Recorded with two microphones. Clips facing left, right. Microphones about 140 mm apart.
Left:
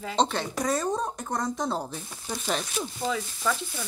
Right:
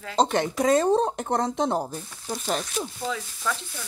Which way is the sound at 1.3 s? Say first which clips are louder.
Right 4 dB; 60° right (ahead or behind).